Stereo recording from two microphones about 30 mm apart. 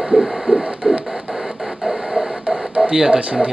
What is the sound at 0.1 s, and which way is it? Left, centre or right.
Hum, right.